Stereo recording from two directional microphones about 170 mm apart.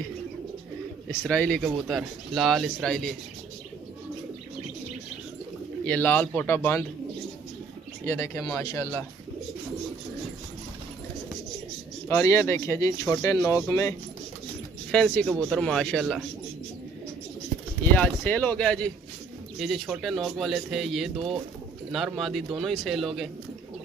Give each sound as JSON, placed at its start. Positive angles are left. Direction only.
{"t": 1.2, "sound": "speech", "side_deg": 5}
{"t": 5.9, "sound": "speech", "side_deg": 10}
{"t": 8.0, "sound": "speech", "side_deg": 15}
{"t": 12.1, "sound": "speech", "side_deg": 15}
{"t": 14.9, "sound": "speech", "side_deg": 5}
{"t": 17.9, "sound": "speech", "side_deg": 10}